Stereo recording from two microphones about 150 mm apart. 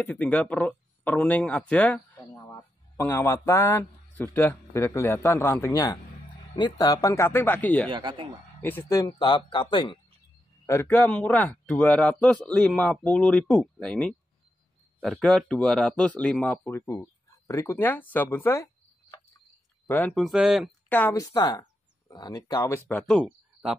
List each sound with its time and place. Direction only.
0.0 s speech: 10° left (ahead or behind)
2.3 s speech: 20° left (ahead or behind)
7.9 s speech: 30° right (ahead or behind)
8.6 s speech: 20° left (ahead or behind)
10.7 s speech: 15° left (ahead or behind)
20.2 s speech: 5° right (ahead or behind)
20.9 s speech: 10° left (ahead or behind)
21.2 s speech: 25° left (ahead or behind)
23.0 s speech: 5° left (ahead or behind)